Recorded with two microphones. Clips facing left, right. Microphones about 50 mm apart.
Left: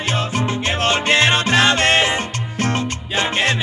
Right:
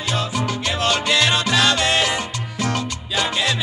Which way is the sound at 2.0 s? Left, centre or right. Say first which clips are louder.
Left 3 dB; left.